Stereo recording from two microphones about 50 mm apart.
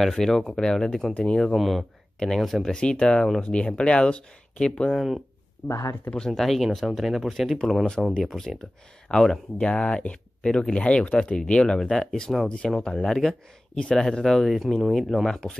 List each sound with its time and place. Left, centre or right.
0.2 s speech: centre
1.5 s speech: centre
4.9 s speech: centre
5.6 s speech: left
6.1 s speech: centre
6.4 s speech: centre
9.6 s speech: left; by 12.4 s centre
12.6 s speech: centre
14.5 s speech: centre
15.2 s speech: centre